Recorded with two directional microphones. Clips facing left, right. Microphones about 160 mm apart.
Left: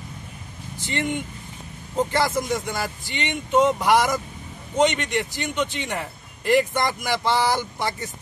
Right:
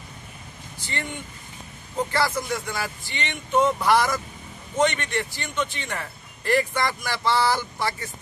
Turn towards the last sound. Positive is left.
turn(degrees=15)  # may be behind; listen again after turning